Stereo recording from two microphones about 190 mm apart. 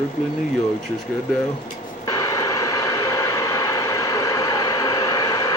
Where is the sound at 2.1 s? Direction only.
20° left (ahead or behind).